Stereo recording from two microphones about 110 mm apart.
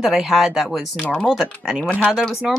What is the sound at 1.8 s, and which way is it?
Speech, 10° left (ahead or behind).